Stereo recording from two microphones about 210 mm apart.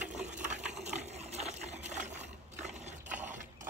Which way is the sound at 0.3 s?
35° right (ahead or behind).